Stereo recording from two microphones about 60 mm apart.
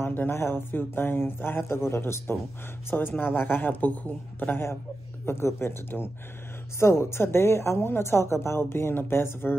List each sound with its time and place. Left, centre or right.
0.0 s a man's voice: left
5.2 s a man's voice: left